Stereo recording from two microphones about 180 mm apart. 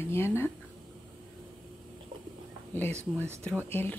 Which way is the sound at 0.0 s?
15° left (ahead or behind).